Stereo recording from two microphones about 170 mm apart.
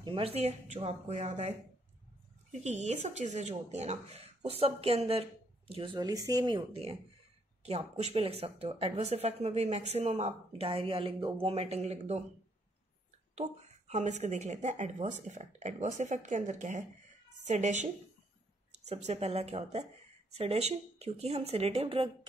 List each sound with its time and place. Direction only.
0.0 s speech: 30° right (ahead or behind)
2.6 s speech: 40° right (ahead or behind)
13.3 s speech: 40° right (ahead or behind)
19.0 s speech: 35° right (ahead or behind)